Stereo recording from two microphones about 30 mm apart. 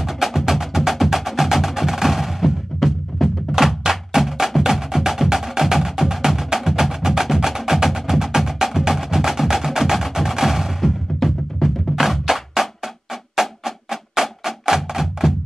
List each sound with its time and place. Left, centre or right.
0.0 s music: centre
3.5 s music: centre
11.2 s drum: centre
13.4 s music: centre